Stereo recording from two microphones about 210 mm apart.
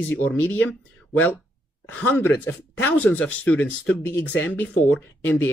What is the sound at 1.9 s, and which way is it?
Speech, 10° left (ahead or behind).